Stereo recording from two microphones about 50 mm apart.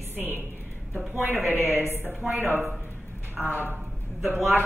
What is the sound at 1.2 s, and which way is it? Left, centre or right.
Speech, right.